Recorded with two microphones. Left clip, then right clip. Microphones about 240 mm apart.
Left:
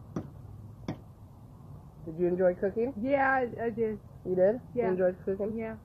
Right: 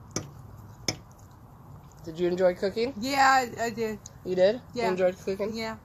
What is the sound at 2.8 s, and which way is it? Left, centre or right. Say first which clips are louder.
A woman's voice: right 5 dB; right.